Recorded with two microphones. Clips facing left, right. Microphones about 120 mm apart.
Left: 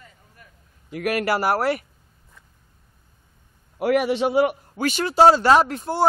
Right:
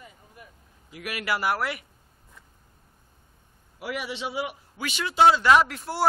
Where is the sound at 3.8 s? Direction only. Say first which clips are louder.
Left 13 dB; 55° left (ahead or behind).